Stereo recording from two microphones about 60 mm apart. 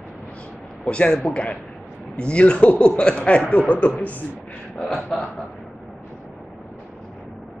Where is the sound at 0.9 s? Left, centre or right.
Centre.